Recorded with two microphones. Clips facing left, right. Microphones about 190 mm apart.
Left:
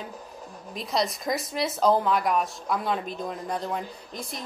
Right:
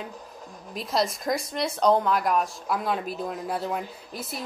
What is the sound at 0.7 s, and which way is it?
Speech, centre (ahead or behind).